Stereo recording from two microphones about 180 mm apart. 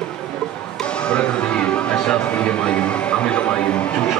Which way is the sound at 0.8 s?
5° left (ahead or behind).